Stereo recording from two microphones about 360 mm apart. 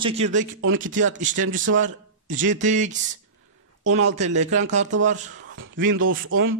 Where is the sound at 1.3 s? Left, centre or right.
Right.